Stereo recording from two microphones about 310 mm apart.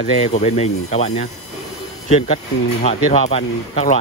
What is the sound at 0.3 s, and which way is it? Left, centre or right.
Speech, left.